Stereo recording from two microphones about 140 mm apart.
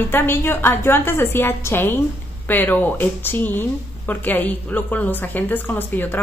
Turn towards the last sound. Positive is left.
turn(degrees=15)  # may be behind; listen again after turning